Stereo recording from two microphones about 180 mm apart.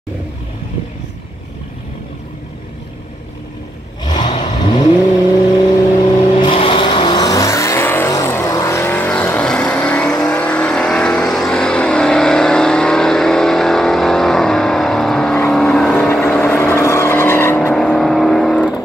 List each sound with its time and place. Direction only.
4.2 s vehicle: 45° left (ahead or behind)
4.6 s vehicle: 25° left (ahead or behind)
6.3 s vehicle: 30° left (ahead or behind); by 15.9 s centre (ahead or behind)
15.9 s vehicle: 10° left (ahead or behind)
17.7 s vehicle: 5° left (ahead or behind)